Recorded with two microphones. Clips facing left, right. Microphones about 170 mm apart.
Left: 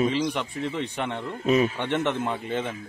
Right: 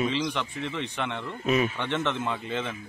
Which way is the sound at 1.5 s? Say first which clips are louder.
Left 3 dB; 30° left (ahead or behind).